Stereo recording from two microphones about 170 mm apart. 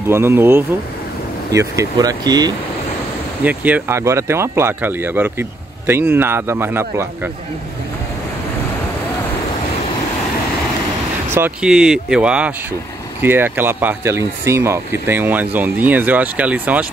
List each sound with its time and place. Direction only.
0.1 s speech: 15° right (ahead or behind)
3.4 s speech: 10° right (ahead or behind)
11.2 s speech: 15° right (ahead or behind)